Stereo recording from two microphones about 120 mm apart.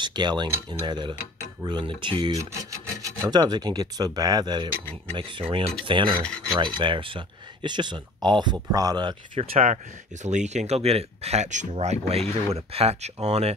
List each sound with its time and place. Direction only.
0.0 s speech: 40° right (ahead or behind)
2.3 s rub: 30° right (ahead or behind)
3.3 s speech: 35° right (ahead or behind)
9.4 s speech: 55° right (ahead or behind)
10.2 s speech: 75° right (ahead or behind)
11.7 s speech: 60° right (ahead or behind)